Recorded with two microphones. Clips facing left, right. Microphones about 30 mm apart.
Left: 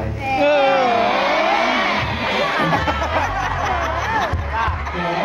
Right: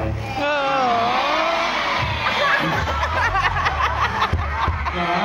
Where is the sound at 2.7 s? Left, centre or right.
Left.